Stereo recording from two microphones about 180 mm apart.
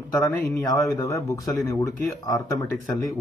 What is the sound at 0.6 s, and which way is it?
A man's voice, 20° left (ahead or behind).